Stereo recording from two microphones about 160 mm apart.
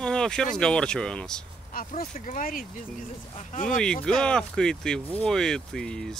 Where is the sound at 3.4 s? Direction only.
45° left (ahead or behind).